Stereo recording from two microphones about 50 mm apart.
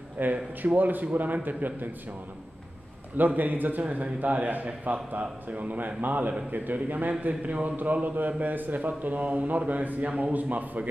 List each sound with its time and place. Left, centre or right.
0.2 s a man's voice: right
3.2 s a man's voice: right